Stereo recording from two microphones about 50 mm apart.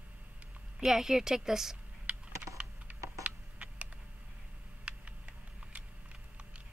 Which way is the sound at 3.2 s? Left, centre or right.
Right.